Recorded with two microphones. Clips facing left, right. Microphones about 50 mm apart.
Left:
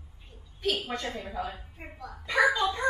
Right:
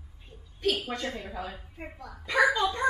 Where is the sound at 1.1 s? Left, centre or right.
Centre.